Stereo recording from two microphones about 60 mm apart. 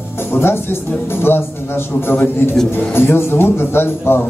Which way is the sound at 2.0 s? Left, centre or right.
Left.